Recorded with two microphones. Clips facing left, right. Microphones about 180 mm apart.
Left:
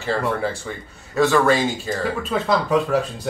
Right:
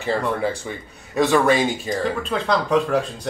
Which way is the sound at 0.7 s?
15° right (ahead or behind).